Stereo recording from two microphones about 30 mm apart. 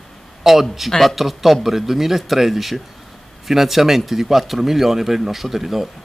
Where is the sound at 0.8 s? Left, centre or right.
Centre.